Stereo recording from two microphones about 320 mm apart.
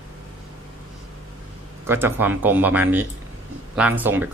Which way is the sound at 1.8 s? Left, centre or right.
Centre.